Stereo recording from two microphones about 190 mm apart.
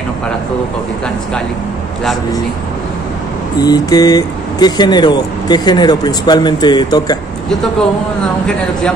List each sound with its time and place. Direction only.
3.6 s speech: 20° left (ahead or behind)